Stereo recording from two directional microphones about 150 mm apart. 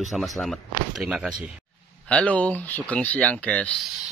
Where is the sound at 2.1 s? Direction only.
10° left (ahead or behind).